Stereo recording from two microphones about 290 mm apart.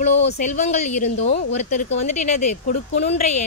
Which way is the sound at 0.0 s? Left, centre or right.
Left.